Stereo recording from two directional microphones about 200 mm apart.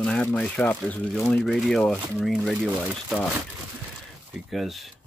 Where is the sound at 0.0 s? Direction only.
5° left (ahead or behind).